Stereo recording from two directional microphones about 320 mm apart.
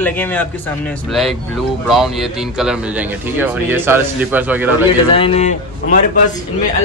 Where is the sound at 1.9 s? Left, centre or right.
Centre.